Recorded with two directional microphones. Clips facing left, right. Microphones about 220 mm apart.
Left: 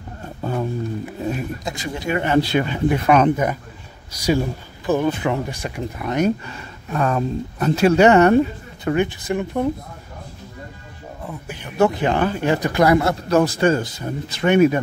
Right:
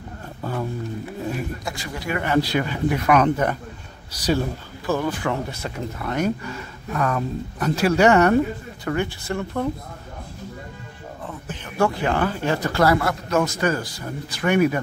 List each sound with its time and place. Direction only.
0.4 s a sound: 25° left (ahead or behind)
1.6 s speech: 20° left (ahead or behind)
4.2 s speech: 10° left (ahead or behind)
11.2 s speech: 10° left (ahead or behind)